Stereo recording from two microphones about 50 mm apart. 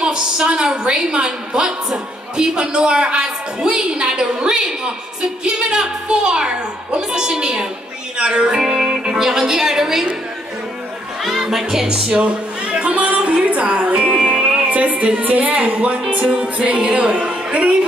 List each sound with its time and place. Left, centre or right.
0.0 s a woman's voice: centre
11.2 s music: centre; by 17.7 s right